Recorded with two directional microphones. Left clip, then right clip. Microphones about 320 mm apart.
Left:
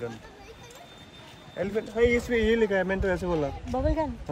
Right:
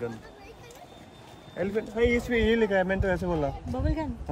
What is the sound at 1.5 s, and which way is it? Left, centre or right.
A man's voice, centre.